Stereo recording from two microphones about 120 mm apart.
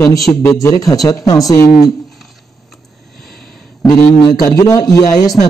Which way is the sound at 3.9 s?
30° left (ahead or behind).